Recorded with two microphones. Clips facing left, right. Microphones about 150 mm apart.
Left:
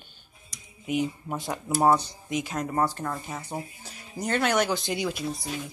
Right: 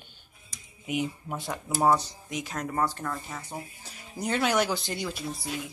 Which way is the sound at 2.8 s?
20° left (ahead or behind).